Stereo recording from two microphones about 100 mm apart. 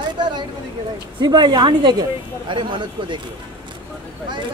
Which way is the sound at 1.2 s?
45° right (ahead or behind).